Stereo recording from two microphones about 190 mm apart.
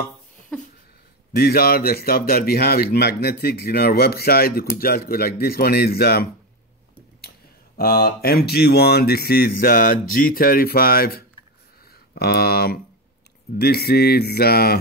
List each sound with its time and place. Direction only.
1.3 s speech: 55° left (ahead or behind)
7.2 s speech: 55° left (ahead or behind)